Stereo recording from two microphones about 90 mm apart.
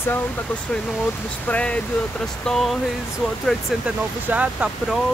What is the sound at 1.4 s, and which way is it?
Speech, 15° left (ahead or behind).